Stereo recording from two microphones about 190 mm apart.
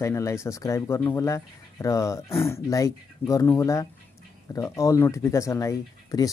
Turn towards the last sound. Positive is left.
turn(degrees=15)  # may be behind; listen again after turning